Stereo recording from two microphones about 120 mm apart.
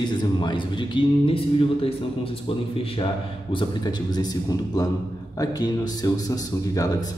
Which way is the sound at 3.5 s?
35° left (ahead or behind).